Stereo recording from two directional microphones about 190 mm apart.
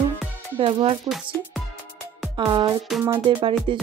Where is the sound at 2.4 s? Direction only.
20° right (ahead or behind).